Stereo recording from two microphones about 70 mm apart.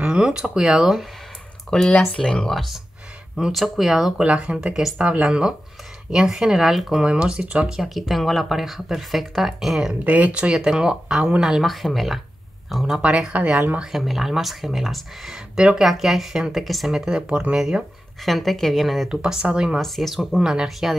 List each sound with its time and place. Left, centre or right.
0.0 s speech: centre
1.7 s speech: centre
3.3 s speech: centre
4.2 s speech: centre
7.6 s speech: centre
10.0 s speech: right; by 13.0 s centre
13.0 s speech: centre
13.9 s speech: centre
19.0 s speech: centre
19.8 s speech: centre
20.2 s speech: centre